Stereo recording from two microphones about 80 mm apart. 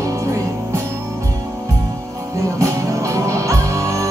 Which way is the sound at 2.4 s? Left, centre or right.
Right.